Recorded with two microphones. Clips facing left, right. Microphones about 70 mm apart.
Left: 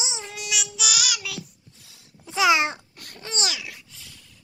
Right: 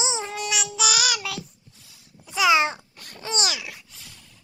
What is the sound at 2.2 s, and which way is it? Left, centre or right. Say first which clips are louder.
Babbling: left 1 dB; left.